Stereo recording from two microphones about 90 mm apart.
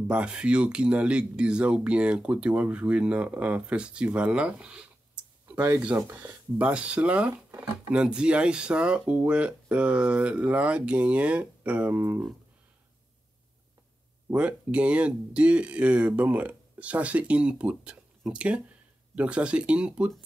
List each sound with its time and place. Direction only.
0.1 s speech: 10° right (ahead or behind)
5.5 s speech: 25° right (ahead or behind)
14.3 s speech: 15° right (ahead or behind)